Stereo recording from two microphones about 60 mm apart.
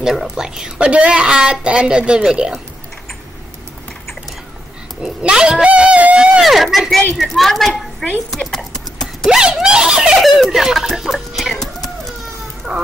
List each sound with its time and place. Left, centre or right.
0.0 s a woman's voice: centre
0.7 s a woman's voice: centre
5.0 s a woman's voice: centre
5.7 s a sound: centre
6.4 s a woman's voice: centre
8.5 s clip-clop: centre
9.3 s a sound: centre
10.2 s music: centre
12.7 s speech: centre